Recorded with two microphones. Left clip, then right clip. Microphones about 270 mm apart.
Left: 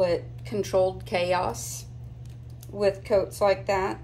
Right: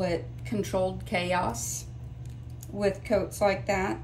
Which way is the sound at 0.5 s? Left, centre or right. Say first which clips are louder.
Left 5 dB; centre.